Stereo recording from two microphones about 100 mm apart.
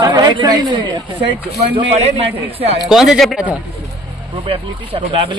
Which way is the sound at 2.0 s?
90° right.